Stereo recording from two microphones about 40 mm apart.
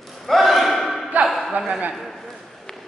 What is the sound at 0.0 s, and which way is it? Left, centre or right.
Battle cry, centre.